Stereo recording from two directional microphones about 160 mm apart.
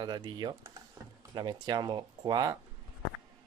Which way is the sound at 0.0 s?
25° right (ahead or behind).